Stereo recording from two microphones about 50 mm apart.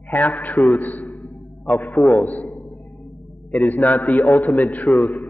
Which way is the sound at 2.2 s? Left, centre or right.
Left.